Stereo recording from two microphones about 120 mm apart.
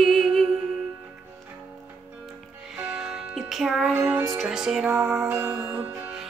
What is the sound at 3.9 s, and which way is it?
Music, 15° right (ahead or behind).